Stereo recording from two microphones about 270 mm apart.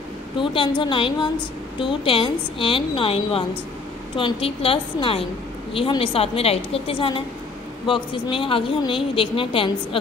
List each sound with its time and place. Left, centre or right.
0.4 s speech: centre